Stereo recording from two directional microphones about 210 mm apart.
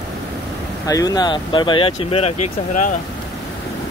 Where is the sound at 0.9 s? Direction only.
15° left (ahead or behind); by 2.9 s 35° left (ahead or behind).